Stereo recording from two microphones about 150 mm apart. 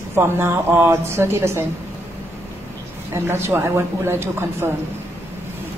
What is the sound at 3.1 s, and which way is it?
A woman's voice, 15° right (ahead or behind).